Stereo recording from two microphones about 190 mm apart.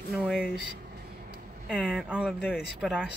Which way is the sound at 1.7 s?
Centre (ahead or behind).